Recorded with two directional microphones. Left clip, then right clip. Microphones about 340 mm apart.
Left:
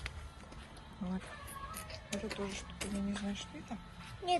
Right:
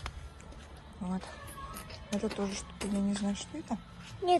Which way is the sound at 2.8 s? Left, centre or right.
Right.